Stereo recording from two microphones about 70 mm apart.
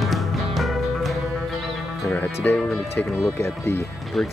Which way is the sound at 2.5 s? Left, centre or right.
Centre.